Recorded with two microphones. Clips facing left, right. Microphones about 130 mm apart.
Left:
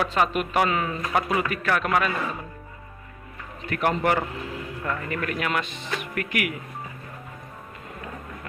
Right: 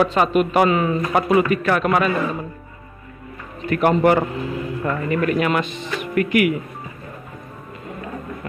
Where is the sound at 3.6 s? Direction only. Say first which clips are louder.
Right 7 dB; 20° right (ahead or behind).